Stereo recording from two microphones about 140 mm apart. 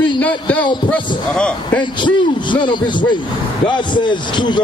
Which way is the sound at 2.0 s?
35° left (ahead or behind).